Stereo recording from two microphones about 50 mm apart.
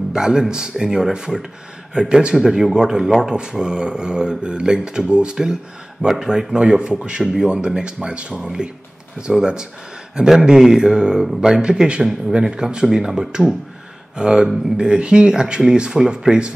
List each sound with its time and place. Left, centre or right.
0.1 s speech: centre